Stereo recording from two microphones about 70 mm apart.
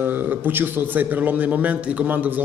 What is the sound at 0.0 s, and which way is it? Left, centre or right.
A man's voice, right.